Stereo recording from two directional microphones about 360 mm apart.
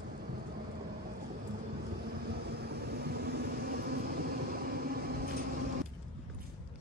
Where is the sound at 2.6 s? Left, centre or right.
Right.